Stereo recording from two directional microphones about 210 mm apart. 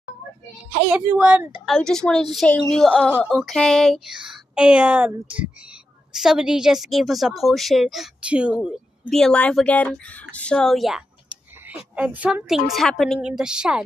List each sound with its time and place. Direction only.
0.9 s a woman's voice: 5° right (ahead or behind)